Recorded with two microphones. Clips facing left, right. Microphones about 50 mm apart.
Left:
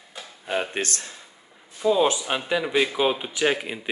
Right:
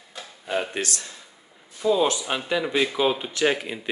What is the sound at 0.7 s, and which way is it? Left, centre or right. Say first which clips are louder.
Speech: left 1 dB; left.